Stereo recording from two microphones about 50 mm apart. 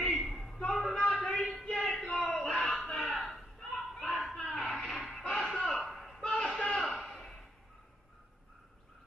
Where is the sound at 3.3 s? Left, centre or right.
Centre.